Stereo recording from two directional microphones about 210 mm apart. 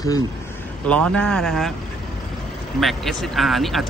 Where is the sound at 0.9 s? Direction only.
5° left (ahead or behind).